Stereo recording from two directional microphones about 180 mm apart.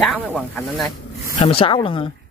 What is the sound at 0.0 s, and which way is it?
Speech, centre (ahead or behind).